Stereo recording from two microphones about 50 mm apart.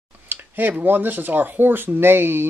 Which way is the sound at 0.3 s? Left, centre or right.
Right.